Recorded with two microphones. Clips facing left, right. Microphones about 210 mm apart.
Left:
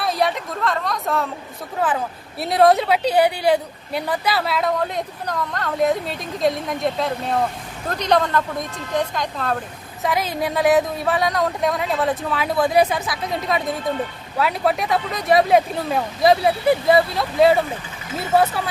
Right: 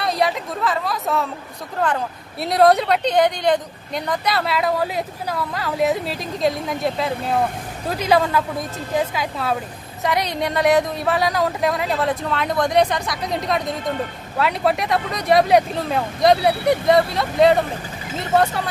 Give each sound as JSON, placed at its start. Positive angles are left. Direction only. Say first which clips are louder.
{"t": 0.0, "sound": "speech", "louder": "even", "side_deg": 0}